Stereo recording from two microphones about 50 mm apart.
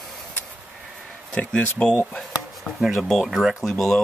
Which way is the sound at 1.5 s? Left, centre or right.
Centre.